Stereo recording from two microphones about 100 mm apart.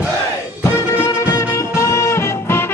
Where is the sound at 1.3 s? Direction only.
30° left (ahead or behind).